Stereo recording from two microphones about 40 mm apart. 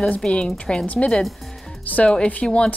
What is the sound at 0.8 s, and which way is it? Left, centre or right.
Speech, left.